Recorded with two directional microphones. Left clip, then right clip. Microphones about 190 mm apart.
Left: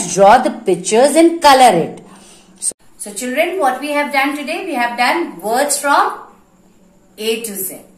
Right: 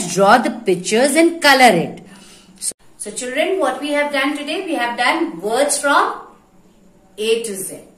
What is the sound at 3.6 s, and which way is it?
A woman's voice, 20° right (ahead or behind).